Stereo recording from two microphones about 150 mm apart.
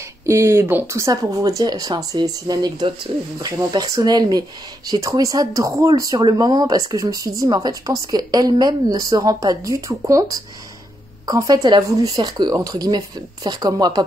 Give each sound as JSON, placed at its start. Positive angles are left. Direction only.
{"t": 0.3, "sound": "speech", "side_deg": -20}